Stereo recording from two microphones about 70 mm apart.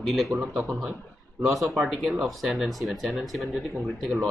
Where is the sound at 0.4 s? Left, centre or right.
Centre.